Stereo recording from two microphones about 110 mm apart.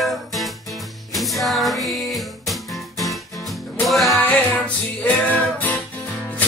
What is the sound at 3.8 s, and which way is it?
Music, centre (ahead or behind).